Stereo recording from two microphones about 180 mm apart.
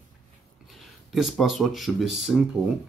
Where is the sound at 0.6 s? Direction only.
Centre (ahead or behind).